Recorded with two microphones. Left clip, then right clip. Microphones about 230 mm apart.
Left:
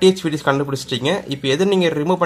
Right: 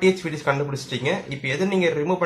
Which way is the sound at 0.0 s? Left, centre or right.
Left.